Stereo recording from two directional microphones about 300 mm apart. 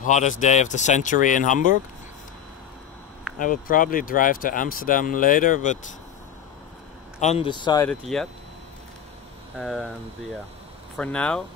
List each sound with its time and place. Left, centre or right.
0.0 s speech: left
3.3 s speech: left
7.2 s speech: left; by 8.3 s centre
9.6 s speech: centre
11.0 s speech: centre